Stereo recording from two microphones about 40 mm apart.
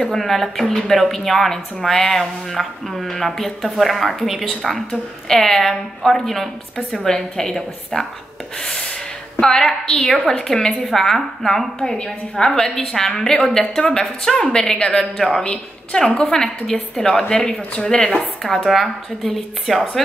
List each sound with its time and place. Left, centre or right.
0.0 s a woman's voice: centre
8.5 s rub: centre
9.4 s a woman's voice: centre
10.7 s a woman's voice: centre
15.4 s a woman's voice: left
19.6 s speech: centre